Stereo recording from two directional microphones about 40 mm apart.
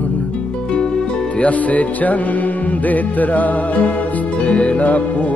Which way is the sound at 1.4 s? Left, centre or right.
Left.